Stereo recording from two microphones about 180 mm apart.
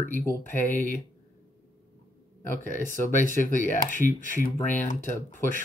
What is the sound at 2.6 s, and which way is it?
Speech, 45° left (ahead or behind).